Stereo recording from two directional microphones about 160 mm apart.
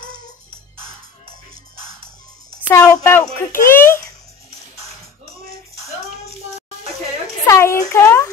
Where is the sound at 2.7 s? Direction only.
15° left (ahead or behind).